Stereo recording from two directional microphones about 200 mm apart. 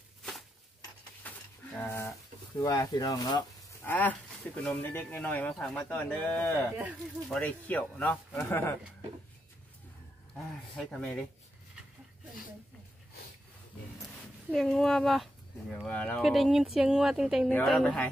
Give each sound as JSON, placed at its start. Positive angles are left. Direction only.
{"t": 0.2, "sound": "a sound", "side_deg": 0}
{"t": 2.6, "sound": "speech", "side_deg": 15}
{"t": 4.6, "sound": "speech", "side_deg": 10}
{"t": 10.9, "sound": "speech", "side_deg": 0}
{"t": 14.5, "sound": "speech", "side_deg": 0}